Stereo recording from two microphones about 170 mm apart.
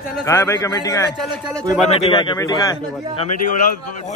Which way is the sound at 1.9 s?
35° left (ahead or behind).